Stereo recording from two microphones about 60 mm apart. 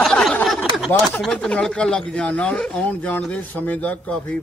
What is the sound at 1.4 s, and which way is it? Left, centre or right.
A man's voice, centre.